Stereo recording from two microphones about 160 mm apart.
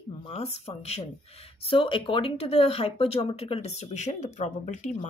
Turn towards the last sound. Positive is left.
turn(degrees=50)  # may be behind; listen again after turning